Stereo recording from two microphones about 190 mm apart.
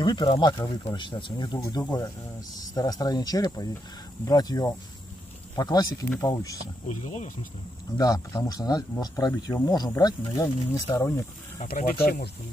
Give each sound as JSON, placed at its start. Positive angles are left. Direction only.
{"t": 0.0, "sound": "speech", "side_deg": 25}
{"t": 6.9, "sound": "speech", "side_deg": 40}
{"t": 8.0, "sound": "speech", "side_deg": 20}
{"t": 11.6, "sound": "speech", "side_deg": 45}